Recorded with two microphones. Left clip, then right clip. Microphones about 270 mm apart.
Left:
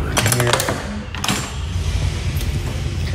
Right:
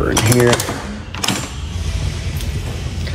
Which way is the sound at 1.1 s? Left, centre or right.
Right.